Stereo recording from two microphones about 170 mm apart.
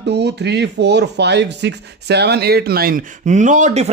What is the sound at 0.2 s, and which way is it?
Speech, 85° right.